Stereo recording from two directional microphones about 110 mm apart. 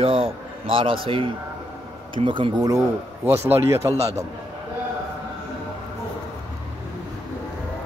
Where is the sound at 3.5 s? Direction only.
25° right (ahead or behind).